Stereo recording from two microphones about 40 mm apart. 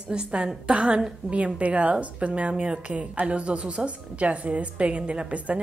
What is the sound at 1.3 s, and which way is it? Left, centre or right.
A woman's voice, right.